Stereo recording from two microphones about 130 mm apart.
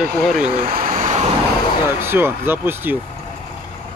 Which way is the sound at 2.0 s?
15° right (ahead or behind).